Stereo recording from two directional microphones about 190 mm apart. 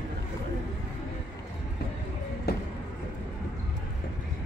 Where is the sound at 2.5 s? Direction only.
55° left (ahead or behind).